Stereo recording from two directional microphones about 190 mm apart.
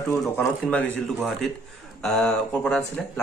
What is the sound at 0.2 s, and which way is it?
Speech, 5° left (ahead or behind).